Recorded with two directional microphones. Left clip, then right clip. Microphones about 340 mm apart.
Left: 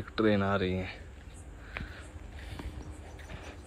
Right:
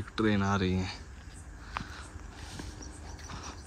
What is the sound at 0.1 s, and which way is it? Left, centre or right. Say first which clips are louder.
Speech: left 2 dB; centre.